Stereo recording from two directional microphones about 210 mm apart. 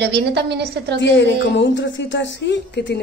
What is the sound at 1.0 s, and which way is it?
A woman's voice, 60° left (ahead or behind).